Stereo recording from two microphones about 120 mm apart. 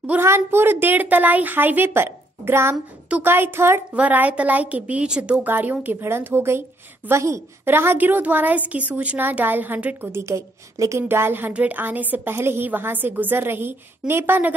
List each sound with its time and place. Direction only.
0.0 s a woman's voice: 15° right (ahead or behind)
10.2 s a woman's voice: 25° right (ahead or behind)